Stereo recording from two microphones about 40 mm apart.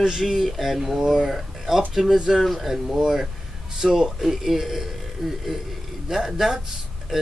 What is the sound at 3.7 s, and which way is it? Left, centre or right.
Speech, centre.